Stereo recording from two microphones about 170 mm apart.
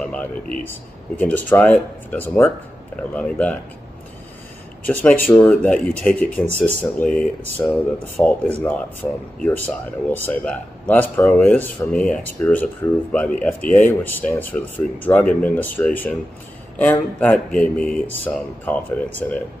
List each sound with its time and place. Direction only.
0.0 s air conditioning: 5° left (ahead or behind)
1.1 s a man's voice: 10° left (ahead or behind)
4.8 s a man's voice: 10° left (ahead or behind)